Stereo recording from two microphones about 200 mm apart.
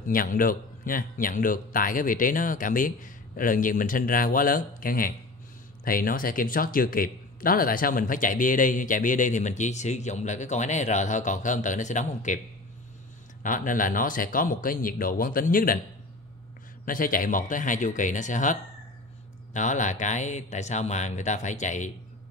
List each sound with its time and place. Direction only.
0.1 s a man's voice: 45° left (ahead or behind)
13.4 s a man's voice: 40° left (ahead or behind)
16.8 s speech: 45° left (ahead or behind)